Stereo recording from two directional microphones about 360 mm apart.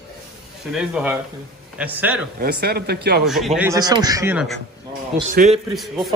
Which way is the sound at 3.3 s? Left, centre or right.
Centre.